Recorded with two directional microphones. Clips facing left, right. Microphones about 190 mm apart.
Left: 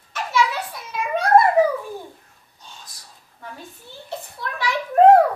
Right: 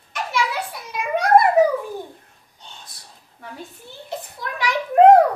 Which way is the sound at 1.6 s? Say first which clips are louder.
Right 1 dB; 20° right (ahead or behind).